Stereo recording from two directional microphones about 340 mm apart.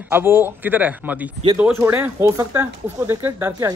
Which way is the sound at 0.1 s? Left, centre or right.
Centre.